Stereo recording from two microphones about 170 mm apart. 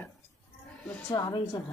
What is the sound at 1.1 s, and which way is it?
Speech, 25° left (ahead or behind).